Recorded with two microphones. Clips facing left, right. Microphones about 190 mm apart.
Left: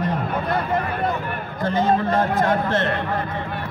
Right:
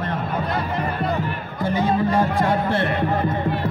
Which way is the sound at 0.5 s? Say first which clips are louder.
Left 2 dB; 55° left (ahead or behind).